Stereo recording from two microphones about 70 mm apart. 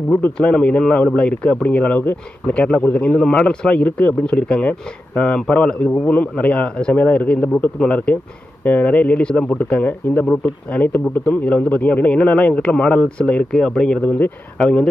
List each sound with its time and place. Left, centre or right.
0.1 s speech: centre
14.0 s speech: left